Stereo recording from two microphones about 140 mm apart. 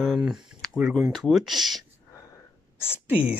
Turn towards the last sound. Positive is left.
turn(degrees=-10)  # may be behind; listen again after turning